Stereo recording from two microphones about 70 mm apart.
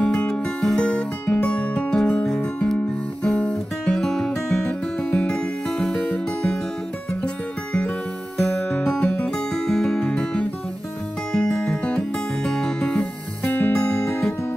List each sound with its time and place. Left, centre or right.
0.0 s music: centre
3.3 s guitar: centre
3.9 s music: centre
8.4 s music: left